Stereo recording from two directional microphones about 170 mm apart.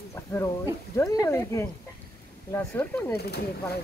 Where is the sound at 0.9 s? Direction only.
20° left (ahead or behind).